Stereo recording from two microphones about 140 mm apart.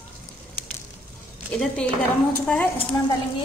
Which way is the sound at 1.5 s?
5° left (ahead or behind).